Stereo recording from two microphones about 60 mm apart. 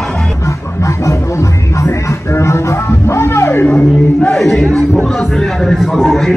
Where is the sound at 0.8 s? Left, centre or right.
Left.